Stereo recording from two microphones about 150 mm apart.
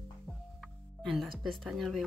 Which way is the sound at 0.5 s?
Centre (ahead or behind).